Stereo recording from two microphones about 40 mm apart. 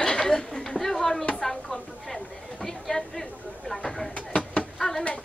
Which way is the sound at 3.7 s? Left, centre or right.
Centre.